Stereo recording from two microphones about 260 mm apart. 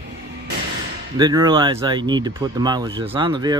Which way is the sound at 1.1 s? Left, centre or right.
Centre.